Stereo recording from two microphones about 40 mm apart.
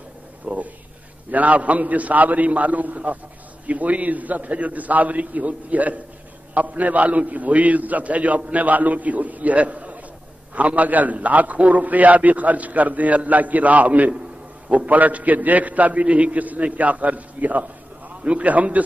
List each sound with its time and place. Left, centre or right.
0.5 s a man's voice: right